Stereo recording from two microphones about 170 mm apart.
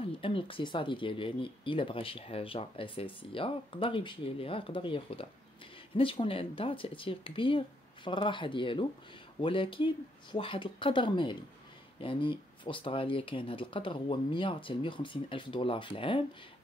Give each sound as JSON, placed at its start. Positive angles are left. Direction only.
{"t": 0.0, "sound": "speech", "side_deg": 30}